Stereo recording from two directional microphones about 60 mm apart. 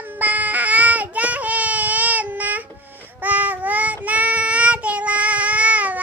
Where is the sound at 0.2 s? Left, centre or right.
Right.